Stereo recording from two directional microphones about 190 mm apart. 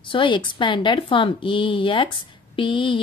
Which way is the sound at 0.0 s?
25° left (ahead or behind).